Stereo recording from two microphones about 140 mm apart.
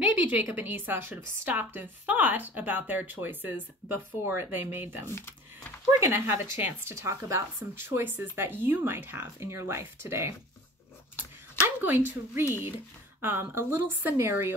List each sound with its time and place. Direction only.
0.0 s a woman's voice: 10° right (ahead or behind)
5.0 s a sound: 15° left (ahead or behind)
5.9 s a woman's voice: 20° right (ahead or behind)
11.6 s a woman's voice: 15° right (ahead or behind)